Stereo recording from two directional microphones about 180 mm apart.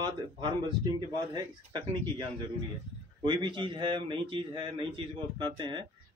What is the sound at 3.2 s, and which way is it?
Speech, 25° right (ahead or behind).